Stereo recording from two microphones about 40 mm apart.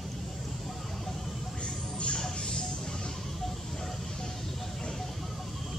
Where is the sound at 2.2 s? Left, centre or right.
Centre.